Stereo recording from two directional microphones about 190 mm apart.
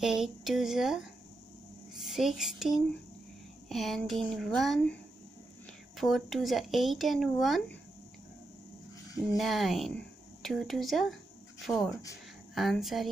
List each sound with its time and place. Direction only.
0.0 s speech: centre (ahead or behind)
2.0 s a sound: centre (ahead or behind)
3.6 s speech: centre (ahead or behind)
5.9 s speech: centre (ahead or behind)
9.4 s speech: centre (ahead or behind)
11.8 s speech: 15° left (ahead or behind)
12.5 s speech: centre (ahead or behind)